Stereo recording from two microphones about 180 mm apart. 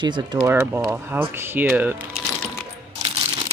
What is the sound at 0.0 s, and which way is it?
Speech, 25° right (ahead or behind).